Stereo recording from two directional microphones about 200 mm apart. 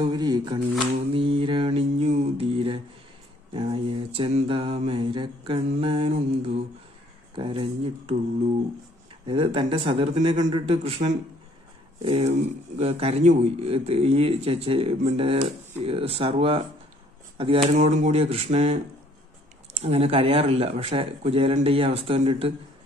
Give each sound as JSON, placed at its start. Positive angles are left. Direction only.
{"t": 0.0, "sound": "mantra", "side_deg": -20}
{"t": 9.2, "sound": "mantra", "side_deg": -25}
{"t": 12.0, "sound": "speech", "side_deg": -30}
{"t": 15.8, "sound": "mantra", "side_deg": -30}
{"t": 17.7, "sound": "speech", "side_deg": -35}
{"t": 19.8, "sound": "mantra", "side_deg": -30}